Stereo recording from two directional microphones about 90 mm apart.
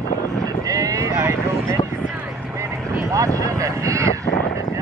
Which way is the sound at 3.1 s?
40° right (ahead or behind).